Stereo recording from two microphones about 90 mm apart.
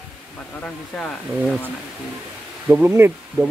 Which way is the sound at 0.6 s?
15° left (ahead or behind).